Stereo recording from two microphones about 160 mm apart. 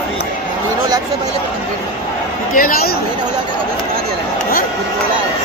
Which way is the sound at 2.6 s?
65° left (ahead or behind).